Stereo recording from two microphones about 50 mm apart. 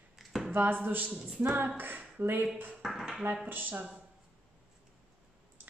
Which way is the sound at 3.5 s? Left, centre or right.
Right.